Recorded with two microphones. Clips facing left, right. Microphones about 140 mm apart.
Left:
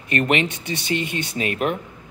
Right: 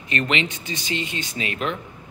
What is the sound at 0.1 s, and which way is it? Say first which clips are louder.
A man's voice: left 4 dB; 55° left (ahead or behind).